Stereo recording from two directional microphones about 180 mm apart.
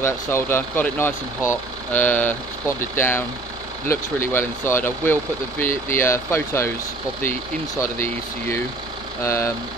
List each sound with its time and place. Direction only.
0.0 s speech: 10° left (ahead or behind)
7.8 s speech: 15° left (ahead or behind)